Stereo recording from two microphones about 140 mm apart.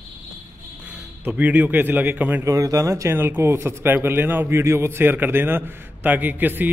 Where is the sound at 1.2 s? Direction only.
10° right (ahead or behind).